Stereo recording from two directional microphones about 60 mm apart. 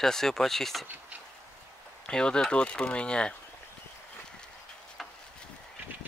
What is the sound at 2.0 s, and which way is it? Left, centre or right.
Speech, centre.